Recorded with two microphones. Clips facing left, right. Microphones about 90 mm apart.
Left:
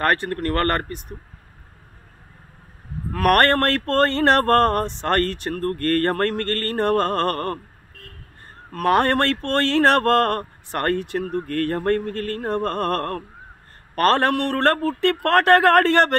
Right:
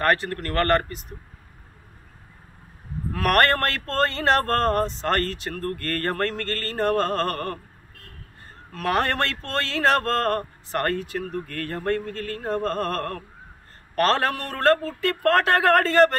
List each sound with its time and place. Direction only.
0.0 s speech: 40° left (ahead or behind)
3.1 s speech: 50° left (ahead or behind)
8.7 s a man's voice: 50° left (ahead or behind)